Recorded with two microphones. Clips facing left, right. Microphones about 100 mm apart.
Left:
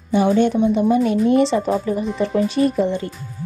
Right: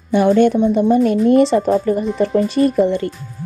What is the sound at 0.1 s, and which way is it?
Speech, 55° right (ahead or behind).